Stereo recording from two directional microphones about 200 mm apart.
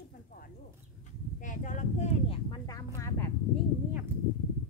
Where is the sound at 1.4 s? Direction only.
40° left (ahead or behind).